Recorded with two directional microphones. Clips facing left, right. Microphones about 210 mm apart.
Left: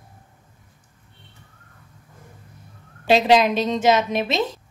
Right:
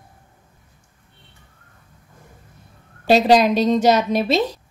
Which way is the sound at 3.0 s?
40° right (ahead or behind).